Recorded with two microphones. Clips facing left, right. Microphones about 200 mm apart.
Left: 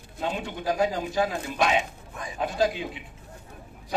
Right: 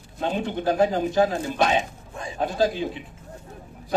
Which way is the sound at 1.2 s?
40° right (ahead or behind).